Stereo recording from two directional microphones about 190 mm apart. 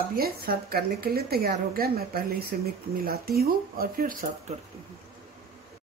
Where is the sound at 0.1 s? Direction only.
55° right (ahead or behind).